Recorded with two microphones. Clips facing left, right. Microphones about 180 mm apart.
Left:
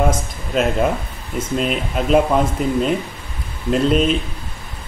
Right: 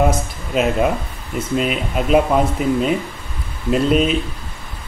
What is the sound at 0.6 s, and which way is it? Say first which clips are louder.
Speech: right 1 dB; 5° right (ahead or behind).